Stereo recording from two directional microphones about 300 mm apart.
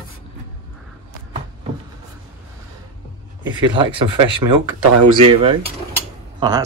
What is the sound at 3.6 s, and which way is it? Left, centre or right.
Speech, centre.